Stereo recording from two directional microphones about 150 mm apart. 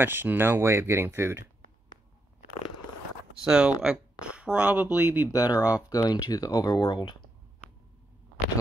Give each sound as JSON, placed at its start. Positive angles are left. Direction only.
{"t": 0.0, "sound": "speech", "side_deg": -15}
{"t": 3.4, "sound": "speech", "side_deg": -5}
{"t": 5.3, "sound": "speech", "side_deg": 25}
{"t": 5.6, "sound": "speech", "side_deg": -10}
{"t": 5.9, "sound": "speech", "side_deg": 25}